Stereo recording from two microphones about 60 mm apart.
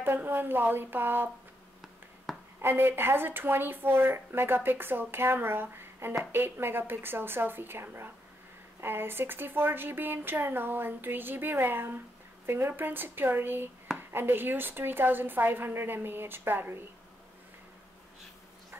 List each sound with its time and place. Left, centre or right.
0.0 s speech: right
2.3 s a sound: centre
2.6 s speech: right